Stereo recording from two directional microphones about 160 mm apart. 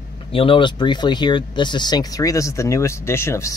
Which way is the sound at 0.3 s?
35° left (ahead or behind).